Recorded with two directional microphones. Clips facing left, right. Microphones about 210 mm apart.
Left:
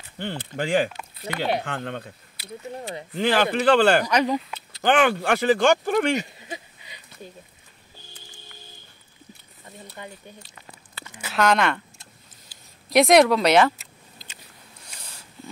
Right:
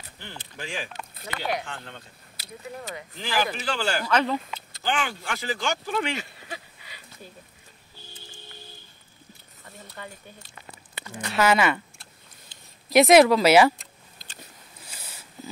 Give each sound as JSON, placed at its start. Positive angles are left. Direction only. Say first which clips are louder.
{"t": 0.2, "sound": "speech", "louder": "left 11 dB", "side_deg": 60}
{"t": 3.2, "sound": "speech", "louder": "left 7 dB", "side_deg": 65}
{"t": 4.0, "sound": "speech", "louder": "left 2 dB", "side_deg": 15}
{"t": 4.8, "sound": "speech", "louder": "left 10 dB", "side_deg": 60}
{"t": 6.1, "sound": "a sound", "louder": "left 7 dB", "side_deg": 20}
{"t": 9.7, "sound": "speech", "louder": "left 2 dB", "side_deg": 20}
{"t": 11.3, "sound": "speech", "louder": "even", "side_deg": -5}
{"t": 12.9, "sound": "speech", "louder": "even", "side_deg": 0}
{"t": 15.0, "sound": "a sound", "louder": "right 1 dB", "side_deg": -5}